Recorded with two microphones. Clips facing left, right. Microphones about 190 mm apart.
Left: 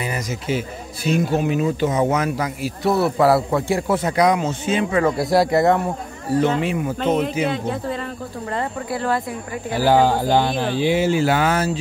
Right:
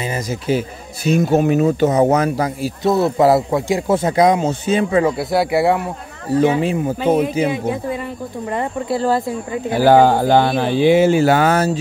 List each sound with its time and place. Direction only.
0.0 s a sound: 25° right (ahead or behind)
0.5 s speech: 40° right (ahead or behind)
2.8 s speech: 20° right (ahead or behind); by 5.0 s 35° right (ahead or behind)
5.0 s speech: 5° right (ahead or behind)
6.6 s speech: 30° right (ahead or behind)
7.0 s speech: 10° right (ahead or behind)
8.9 s speech: 30° right (ahead or behind)
9.8 s speech: 55° right (ahead or behind)